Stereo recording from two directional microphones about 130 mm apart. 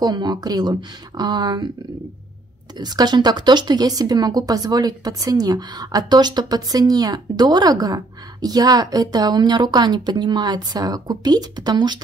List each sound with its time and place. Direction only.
0.0 s speech: 35° right (ahead or behind)
2.8 s speech: 30° right (ahead or behind)